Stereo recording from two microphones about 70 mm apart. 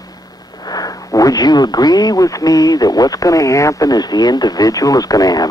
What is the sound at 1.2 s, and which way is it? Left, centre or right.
Speech, left.